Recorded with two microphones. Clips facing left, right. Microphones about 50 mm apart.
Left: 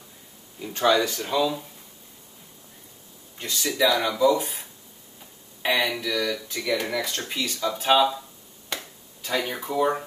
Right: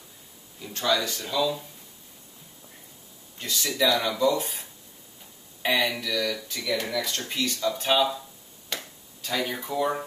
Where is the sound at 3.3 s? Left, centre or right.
Centre.